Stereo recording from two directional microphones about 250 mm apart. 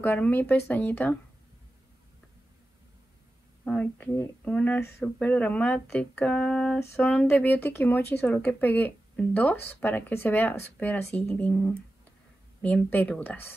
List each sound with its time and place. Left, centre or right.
0.0 s speech: centre
3.6 s speech: centre